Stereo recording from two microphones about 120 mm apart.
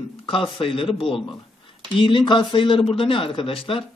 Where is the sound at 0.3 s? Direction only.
50° left (ahead or behind).